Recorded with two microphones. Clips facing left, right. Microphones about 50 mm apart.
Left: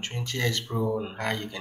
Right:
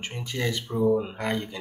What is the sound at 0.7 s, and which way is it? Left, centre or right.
Speech, centre.